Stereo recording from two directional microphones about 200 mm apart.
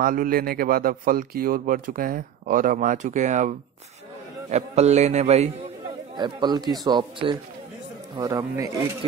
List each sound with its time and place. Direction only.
0.0 s a man's voice: 45° right (ahead or behind)
6.1 s a man's voice: 20° right (ahead or behind)